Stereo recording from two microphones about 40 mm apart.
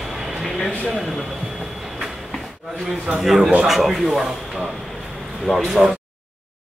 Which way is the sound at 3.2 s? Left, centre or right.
Centre.